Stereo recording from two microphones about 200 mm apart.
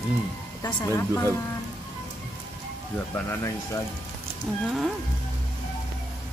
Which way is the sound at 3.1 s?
15° left (ahead or behind).